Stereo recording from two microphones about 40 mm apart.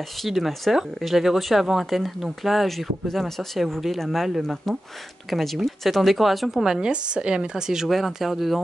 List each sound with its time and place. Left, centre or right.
0.2 s speech: centre
6.9 s speech: right
7.9 s speech: centre